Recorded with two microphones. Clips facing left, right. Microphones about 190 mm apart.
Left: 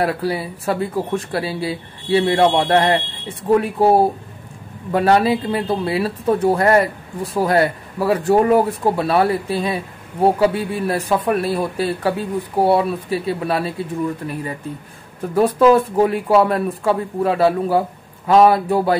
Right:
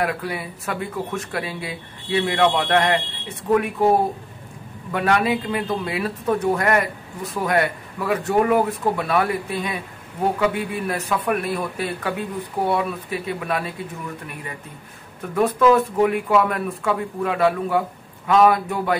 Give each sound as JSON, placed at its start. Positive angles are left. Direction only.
{"t": 0.0, "sound": "speech", "side_deg": 30}
{"t": 4.9, "sound": "speech", "side_deg": 35}